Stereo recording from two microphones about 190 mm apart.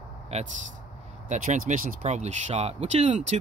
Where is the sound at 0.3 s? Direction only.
35° right (ahead or behind).